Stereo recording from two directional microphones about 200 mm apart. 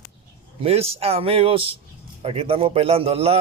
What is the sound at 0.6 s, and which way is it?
A man's voice, 30° right (ahead or behind).